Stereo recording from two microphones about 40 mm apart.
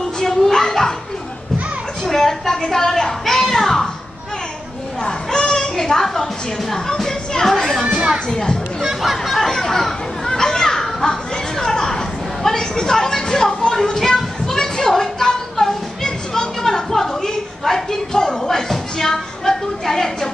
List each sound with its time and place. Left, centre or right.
0.2 s a sound: centre
2.0 s speech: centre
5.0 s children playing: centre
6.7 s speech: centre
8.3 s speech: centre
8.8 s speech: centre
12.4 s a sound: centre